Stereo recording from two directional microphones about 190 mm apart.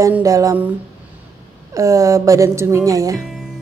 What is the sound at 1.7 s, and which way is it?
A woman's voice, 15° right (ahead or behind).